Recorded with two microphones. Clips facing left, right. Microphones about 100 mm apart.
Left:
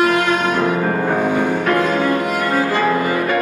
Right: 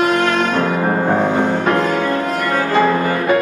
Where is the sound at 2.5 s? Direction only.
10° left (ahead or behind).